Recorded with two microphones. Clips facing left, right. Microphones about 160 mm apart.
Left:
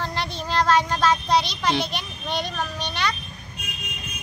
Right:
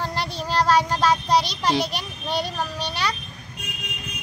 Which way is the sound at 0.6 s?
10° right (ahead or behind).